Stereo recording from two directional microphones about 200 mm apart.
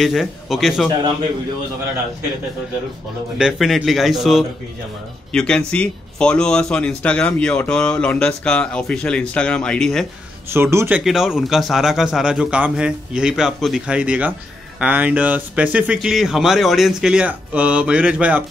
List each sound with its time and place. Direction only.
0.0 s a man's voice: centre (ahead or behind)
3.3 s a man's voice: centre (ahead or behind)
10.5 s a man's voice: 10° right (ahead or behind)